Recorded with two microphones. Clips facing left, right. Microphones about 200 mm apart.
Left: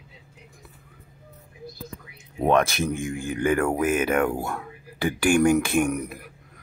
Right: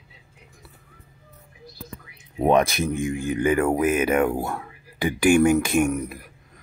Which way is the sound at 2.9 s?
50° left (ahead or behind).